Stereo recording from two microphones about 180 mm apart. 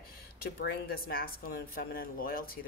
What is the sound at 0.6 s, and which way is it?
Speech, 55° left (ahead or behind).